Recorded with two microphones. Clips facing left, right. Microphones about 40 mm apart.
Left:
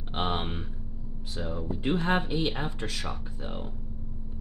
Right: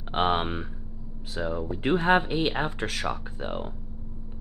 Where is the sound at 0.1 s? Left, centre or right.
Right.